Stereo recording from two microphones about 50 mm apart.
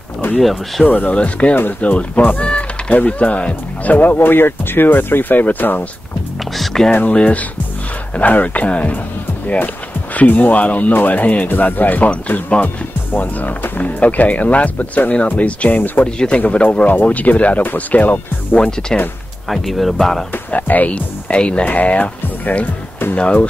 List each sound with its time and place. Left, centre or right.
0.4 s speech: centre
0.8 s speech: left
6.5 s music: centre
6.9 s speech: left
8.2 s speech: left
10.1 s speech: left
16.2 s speech: left
18.6 s speech: centre
19.5 s speech: centre
20.5 s speech: left